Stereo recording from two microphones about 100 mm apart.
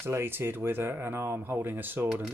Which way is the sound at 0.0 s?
25° right (ahead or behind).